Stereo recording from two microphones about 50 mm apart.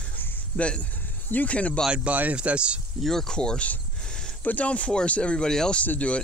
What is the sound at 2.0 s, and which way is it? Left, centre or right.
Speech, right.